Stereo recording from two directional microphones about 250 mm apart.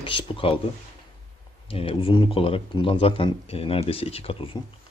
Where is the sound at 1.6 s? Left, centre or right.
Left.